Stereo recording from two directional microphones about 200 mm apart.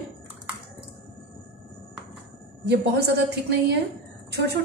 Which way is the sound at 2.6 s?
55° right (ahead or behind).